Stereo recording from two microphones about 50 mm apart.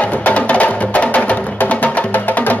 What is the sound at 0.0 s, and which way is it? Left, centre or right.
Music, left.